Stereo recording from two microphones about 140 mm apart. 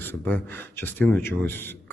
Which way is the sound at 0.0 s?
15° left (ahead or behind).